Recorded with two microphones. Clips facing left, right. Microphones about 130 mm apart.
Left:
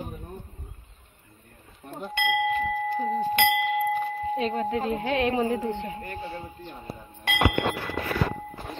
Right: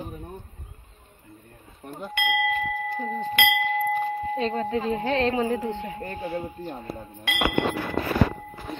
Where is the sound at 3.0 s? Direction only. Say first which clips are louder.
Left 5 dB; 15° left (ahead or behind).